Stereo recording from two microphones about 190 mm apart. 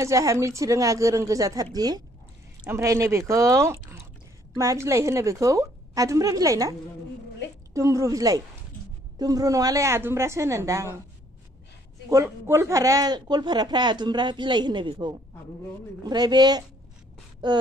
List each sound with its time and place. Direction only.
0.0 s a woman's voice: 15° right (ahead or behind)
7.7 s a woman's voice: 15° right (ahead or behind)
12.1 s speech: 15° right (ahead or behind)